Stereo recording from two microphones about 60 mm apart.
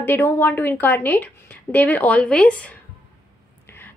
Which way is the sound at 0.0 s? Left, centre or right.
Left.